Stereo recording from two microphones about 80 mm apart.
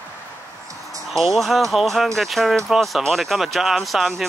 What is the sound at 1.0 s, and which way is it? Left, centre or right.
Speech, centre.